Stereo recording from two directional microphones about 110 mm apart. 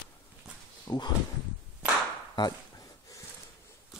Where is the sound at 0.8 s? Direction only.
40° left (ahead or behind).